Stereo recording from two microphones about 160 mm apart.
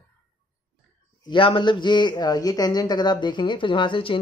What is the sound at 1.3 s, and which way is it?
A man's voice, 30° left (ahead or behind).